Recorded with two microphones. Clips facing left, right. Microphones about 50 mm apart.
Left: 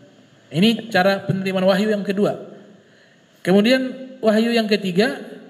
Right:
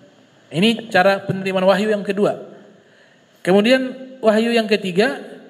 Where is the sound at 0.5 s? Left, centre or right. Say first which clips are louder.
Right 1 dB; centre.